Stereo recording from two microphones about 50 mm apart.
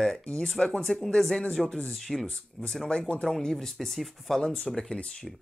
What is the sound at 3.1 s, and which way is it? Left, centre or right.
Speech, centre.